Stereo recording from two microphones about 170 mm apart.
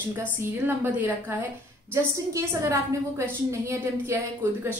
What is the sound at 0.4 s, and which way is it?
A woman's voice, 10° right (ahead or behind).